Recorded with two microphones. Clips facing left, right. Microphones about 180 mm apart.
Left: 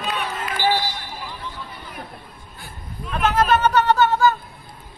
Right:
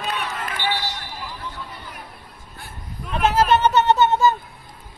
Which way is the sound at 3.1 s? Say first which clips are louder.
Right 1 dB; 25° right (ahead or behind).